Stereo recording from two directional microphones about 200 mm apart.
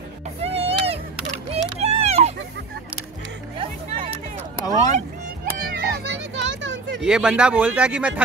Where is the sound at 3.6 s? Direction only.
25° right (ahead or behind).